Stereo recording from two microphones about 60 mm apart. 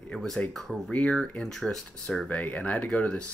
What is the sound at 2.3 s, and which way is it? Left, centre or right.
Speech, left.